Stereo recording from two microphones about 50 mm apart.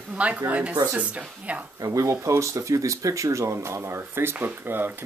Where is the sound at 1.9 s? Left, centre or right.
Right.